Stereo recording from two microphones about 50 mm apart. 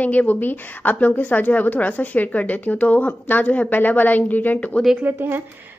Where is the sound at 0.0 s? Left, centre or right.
Left.